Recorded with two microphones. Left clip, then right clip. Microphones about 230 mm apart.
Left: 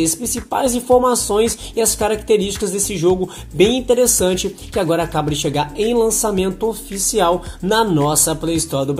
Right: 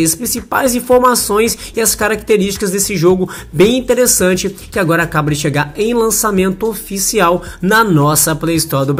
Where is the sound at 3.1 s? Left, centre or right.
Centre.